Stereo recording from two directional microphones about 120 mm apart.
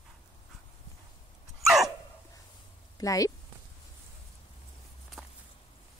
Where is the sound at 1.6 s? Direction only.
Centre (ahead or behind).